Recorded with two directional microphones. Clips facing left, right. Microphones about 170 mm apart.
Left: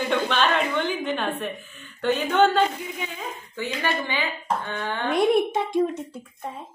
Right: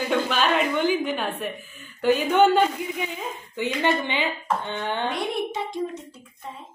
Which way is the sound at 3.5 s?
20° right (ahead or behind).